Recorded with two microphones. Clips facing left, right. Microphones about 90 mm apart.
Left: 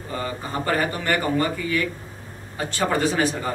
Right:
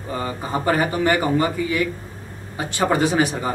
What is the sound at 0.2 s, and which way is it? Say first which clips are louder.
Speech: right 4 dB; 15° right (ahead or behind).